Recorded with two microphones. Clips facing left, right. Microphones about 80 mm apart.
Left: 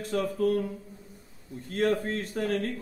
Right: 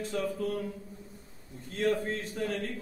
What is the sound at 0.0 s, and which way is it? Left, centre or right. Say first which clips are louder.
Speech: left 5 dB; left.